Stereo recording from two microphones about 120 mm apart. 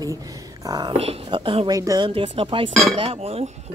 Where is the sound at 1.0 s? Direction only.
50° right (ahead or behind).